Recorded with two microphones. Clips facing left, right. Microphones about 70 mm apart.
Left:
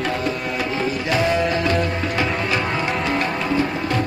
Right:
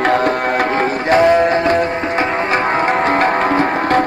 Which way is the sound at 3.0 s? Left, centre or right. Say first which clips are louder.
Right 8 dB; right.